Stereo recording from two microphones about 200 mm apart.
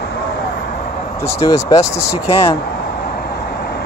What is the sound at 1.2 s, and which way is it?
Speech, 15° left (ahead or behind).